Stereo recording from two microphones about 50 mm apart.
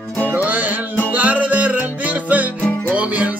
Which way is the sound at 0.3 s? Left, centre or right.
Right.